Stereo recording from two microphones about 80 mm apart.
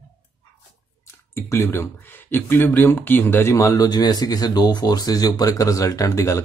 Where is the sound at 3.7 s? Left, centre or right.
Left.